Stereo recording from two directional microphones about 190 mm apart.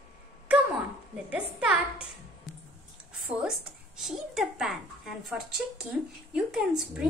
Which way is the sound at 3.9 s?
Centre (ahead or behind).